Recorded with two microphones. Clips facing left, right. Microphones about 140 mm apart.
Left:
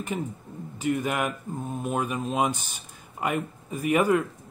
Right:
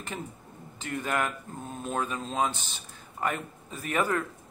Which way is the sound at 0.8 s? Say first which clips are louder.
Left 4 dB; 10° left (ahead or behind).